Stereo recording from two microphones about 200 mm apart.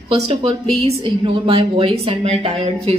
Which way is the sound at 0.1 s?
25° right (ahead or behind).